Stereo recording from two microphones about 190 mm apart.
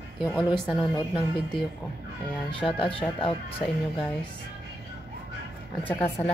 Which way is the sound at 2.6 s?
30° left (ahead or behind).